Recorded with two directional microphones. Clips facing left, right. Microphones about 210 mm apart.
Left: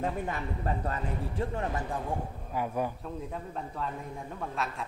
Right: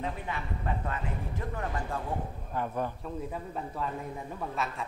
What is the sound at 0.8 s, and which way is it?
A man's voice, 35° left (ahead or behind).